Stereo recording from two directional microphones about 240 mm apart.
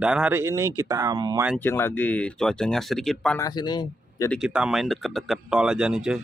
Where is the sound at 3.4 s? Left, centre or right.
Centre.